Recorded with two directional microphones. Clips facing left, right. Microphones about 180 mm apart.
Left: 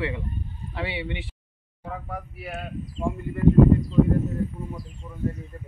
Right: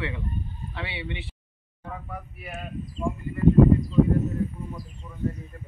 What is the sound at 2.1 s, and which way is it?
Speech, 75° left (ahead or behind).